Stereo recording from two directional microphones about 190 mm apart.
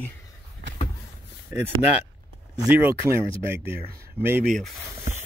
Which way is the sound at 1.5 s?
10° right (ahead or behind).